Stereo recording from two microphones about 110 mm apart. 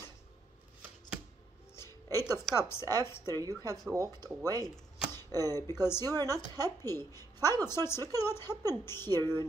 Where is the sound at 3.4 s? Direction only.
35° right (ahead or behind).